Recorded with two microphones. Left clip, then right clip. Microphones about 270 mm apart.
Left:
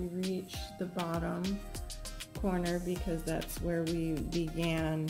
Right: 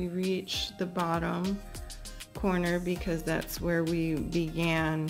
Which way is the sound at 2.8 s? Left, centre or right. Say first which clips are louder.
Right 4 dB; centre.